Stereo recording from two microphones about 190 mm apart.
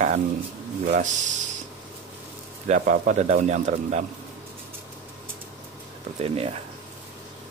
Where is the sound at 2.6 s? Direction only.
45° right (ahead or behind).